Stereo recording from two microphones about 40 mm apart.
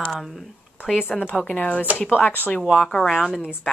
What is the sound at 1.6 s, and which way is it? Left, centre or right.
Speech, left.